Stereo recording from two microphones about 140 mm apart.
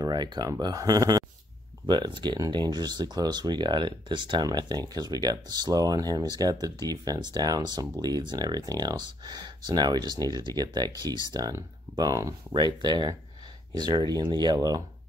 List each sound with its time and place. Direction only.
0.0 s speech: 30° right (ahead or behind)